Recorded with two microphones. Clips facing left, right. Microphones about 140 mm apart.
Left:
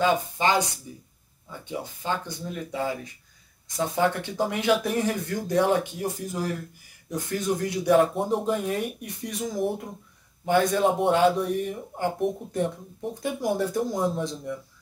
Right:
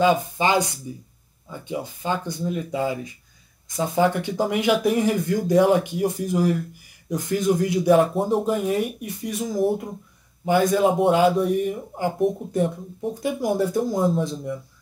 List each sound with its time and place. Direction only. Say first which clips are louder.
0.0 s speech: right 3 dB; 15° right (ahead or behind)